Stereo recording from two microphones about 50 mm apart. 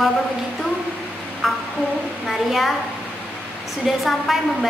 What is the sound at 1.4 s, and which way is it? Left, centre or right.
A woman's voice, centre.